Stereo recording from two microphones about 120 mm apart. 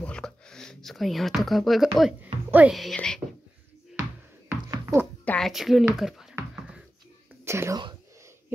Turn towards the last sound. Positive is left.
turn(degrees=-20)  # may be behind; listen again after turning